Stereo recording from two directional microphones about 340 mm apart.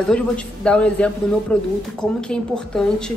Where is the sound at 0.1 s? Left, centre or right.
Centre.